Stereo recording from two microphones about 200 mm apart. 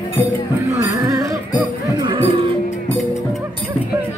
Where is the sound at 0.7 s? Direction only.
15° right (ahead or behind).